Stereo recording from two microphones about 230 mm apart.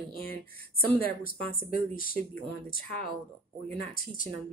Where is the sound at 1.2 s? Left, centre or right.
Left.